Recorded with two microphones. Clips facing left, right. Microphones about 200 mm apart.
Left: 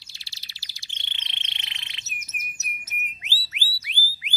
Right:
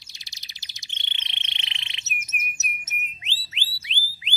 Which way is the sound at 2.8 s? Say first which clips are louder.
Right 1 dB; 25° right (ahead or behind).